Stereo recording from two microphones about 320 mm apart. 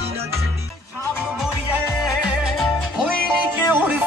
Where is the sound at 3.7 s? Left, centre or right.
Centre.